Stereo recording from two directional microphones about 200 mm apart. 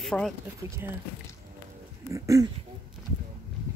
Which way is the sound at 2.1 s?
15° right (ahead or behind).